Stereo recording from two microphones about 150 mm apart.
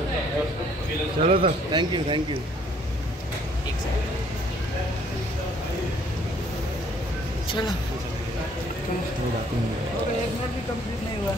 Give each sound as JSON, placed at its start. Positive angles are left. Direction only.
{"t": 1.2, "sound": "a man's voice", "side_deg": -40}